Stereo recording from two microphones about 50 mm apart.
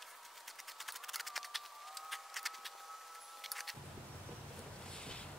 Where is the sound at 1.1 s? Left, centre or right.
Centre.